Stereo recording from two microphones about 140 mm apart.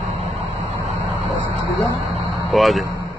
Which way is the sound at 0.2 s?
50° right (ahead or behind).